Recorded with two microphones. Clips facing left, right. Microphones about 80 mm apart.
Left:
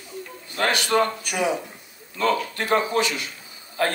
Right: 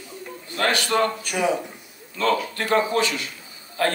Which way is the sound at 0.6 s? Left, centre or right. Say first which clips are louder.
Even; left.